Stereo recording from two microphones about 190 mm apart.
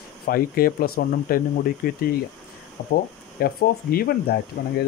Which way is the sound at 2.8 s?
45° left (ahead or behind).